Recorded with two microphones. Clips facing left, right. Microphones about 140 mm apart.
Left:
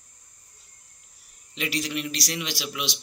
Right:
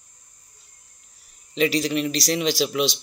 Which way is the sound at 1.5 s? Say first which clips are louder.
Right 8 dB; 35° right (ahead or behind).